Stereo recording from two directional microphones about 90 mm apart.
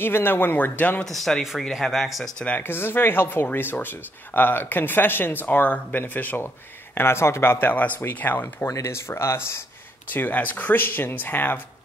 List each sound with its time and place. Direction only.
0.0 s speech: 25° left (ahead or behind)
1.0 s speech: 5° left (ahead or behind)
2.4 s speech: 20° left (ahead or behind)